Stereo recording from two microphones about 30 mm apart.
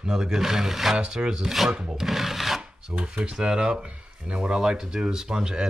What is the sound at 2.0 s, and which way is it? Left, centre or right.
Rub, centre.